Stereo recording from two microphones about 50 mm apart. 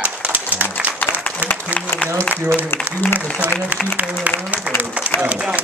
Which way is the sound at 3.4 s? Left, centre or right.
Right.